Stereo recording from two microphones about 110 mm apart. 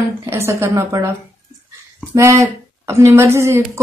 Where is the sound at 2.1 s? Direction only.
30° right (ahead or behind).